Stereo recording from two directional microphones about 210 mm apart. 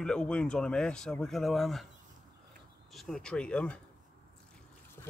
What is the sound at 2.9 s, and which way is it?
Speech, centre (ahead or behind).